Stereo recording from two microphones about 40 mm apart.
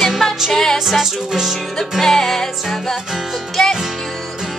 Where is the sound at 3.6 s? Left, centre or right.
Centre.